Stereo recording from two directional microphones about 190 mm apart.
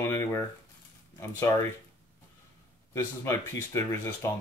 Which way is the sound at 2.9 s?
15° left (ahead or behind).